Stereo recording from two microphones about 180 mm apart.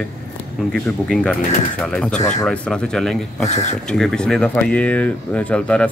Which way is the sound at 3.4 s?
40° left (ahead or behind).